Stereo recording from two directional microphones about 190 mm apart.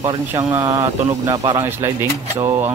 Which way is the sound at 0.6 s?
15° right (ahead or behind).